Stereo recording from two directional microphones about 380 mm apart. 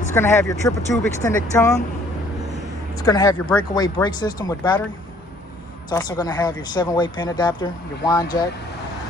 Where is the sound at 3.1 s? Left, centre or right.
Centre.